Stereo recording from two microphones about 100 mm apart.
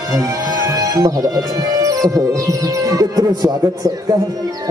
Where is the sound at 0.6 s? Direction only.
35° right (ahead or behind).